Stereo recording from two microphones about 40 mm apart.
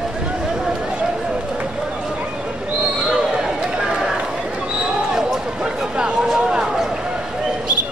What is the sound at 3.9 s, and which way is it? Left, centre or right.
Run, centre.